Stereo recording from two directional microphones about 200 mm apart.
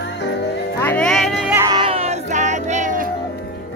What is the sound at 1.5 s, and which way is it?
Music, 20° right (ahead or behind).